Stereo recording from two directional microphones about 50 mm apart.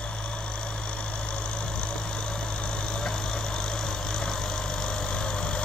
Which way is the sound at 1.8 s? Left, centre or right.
Left.